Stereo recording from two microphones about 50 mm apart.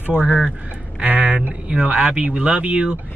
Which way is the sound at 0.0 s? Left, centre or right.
Right.